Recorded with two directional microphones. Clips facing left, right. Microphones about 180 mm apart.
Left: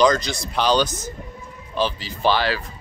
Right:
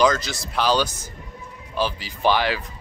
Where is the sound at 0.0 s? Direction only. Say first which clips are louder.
Left 2 dB; 5° right (ahead or behind).